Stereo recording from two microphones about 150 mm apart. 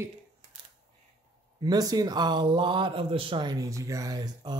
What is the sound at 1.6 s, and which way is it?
Speech, 25° right (ahead or behind).